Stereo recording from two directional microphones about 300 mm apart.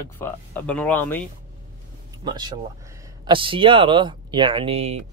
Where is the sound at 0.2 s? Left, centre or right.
Centre.